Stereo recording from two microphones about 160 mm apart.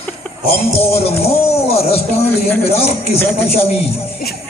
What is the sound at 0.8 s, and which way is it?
A man's voice, 40° left (ahead or behind).